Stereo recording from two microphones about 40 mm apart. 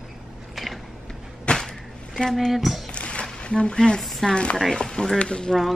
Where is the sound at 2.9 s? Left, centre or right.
Left.